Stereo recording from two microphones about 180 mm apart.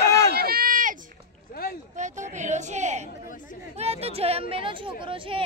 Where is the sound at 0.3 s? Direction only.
60° right (ahead or behind).